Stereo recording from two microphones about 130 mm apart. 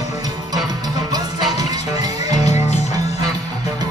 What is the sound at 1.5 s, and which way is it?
Music, 30° right (ahead or behind).